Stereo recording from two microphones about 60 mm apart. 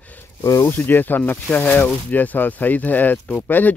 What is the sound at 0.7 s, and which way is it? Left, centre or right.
Speech, left.